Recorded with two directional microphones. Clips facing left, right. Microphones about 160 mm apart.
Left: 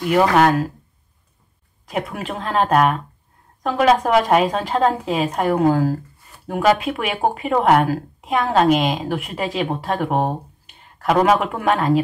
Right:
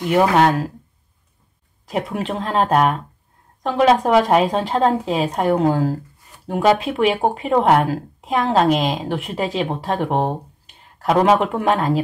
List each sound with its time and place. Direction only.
0.1 s speech: 25° right (ahead or behind)
1.9 s speech: 30° right (ahead or behind)